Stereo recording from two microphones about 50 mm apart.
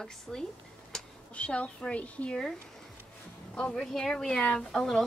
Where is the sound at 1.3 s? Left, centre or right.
Left.